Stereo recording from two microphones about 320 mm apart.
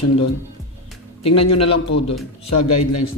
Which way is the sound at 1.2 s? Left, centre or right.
Left.